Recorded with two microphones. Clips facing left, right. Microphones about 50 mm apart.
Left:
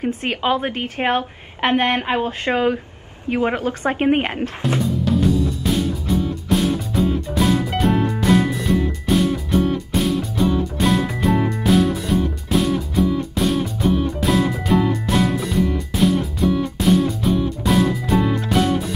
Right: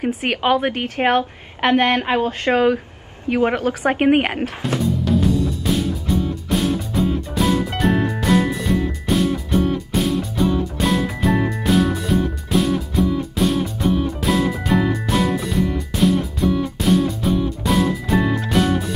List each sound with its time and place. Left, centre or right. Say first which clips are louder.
0.0 s speech: right 1 dB; centre
0.7 s a woman's voice: right 2 dB; centre
2.0 s speech: right 2 dB; centre
3.8 s a woman's voice: right 2 dB; centre
4.6 s music: even; centre